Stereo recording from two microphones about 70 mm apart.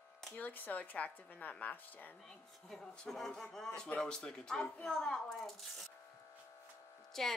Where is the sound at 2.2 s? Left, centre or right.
Centre.